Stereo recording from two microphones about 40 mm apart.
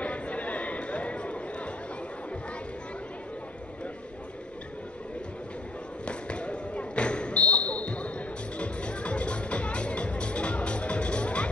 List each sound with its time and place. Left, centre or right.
0.0 s chatter: left
6.0 s basketball bounce: left
8.5 s music: left